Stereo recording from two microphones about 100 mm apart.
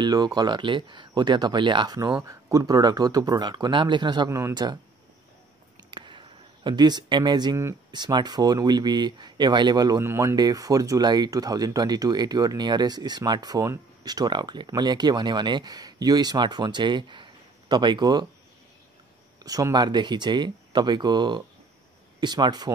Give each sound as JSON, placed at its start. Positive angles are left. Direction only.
{"t": 0.0, "sound": "speech", "side_deg": -45}
{"t": 2.2, "sound": "speech", "side_deg": -40}
{"t": 4.3, "sound": "speech", "side_deg": -30}
{"t": 5.9, "sound": "a sound", "side_deg": -50}
{"t": 7.9, "sound": "speech", "side_deg": -45}
{"t": 9.9, "sound": "speech", "side_deg": -30}
{"t": 10.3, "sound": "speech", "side_deg": -40}
{"t": 19.4, "sound": "speech", "side_deg": -40}